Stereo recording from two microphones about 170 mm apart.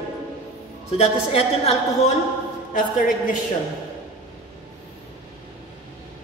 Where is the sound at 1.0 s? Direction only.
40° left (ahead or behind).